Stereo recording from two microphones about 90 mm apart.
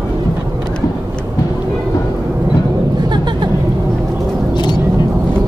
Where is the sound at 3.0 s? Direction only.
55° right (ahead or behind).